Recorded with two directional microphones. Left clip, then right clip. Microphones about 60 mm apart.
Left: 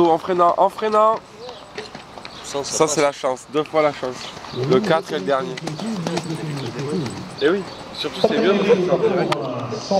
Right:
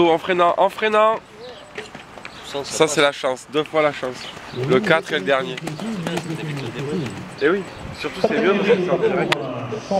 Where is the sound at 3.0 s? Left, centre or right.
Right.